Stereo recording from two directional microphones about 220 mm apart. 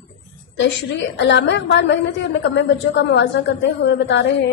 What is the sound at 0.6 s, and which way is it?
A woman's voice, 55° left (ahead or behind).